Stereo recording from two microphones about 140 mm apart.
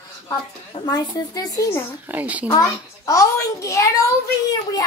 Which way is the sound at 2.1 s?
10° right (ahead or behind).